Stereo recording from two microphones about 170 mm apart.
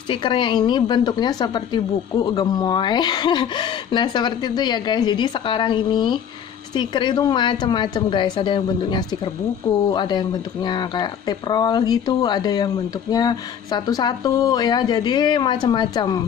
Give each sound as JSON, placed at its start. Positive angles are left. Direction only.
{"t": 0.1, "sound": "a woman's voice", "side_deg": 30}